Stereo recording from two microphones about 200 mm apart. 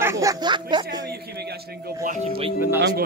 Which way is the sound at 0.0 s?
15° right (ahead or behind).